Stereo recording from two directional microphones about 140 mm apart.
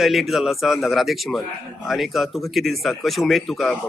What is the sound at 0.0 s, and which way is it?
Speech, centre (ahead or behind).